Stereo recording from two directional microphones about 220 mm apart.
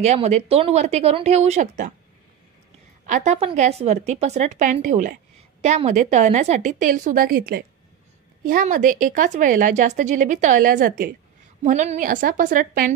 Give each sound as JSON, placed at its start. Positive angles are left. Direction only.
{"t": 0.0, "sound": "speech", "side_deg": -30}
{"t": 3.1, "sound": "a woman's voice", "side_deg": -30}